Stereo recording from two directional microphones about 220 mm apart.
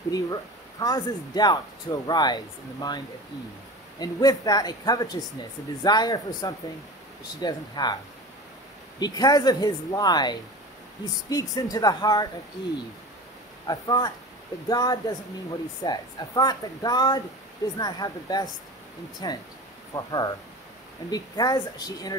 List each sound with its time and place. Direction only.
0.1 s speech: 15° left (ahead or behind)
4.0 s speech: 15° left (ahead or behind)
9.0 s speech: 15° left (ahead or behind)
13.7 s speech: 20° left (ahead or behind)